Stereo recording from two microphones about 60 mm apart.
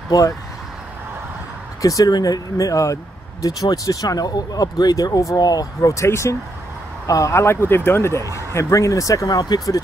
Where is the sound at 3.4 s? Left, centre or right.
Left.